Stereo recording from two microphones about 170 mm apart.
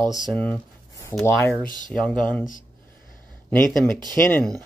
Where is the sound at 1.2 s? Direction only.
15° left (ahead or behind).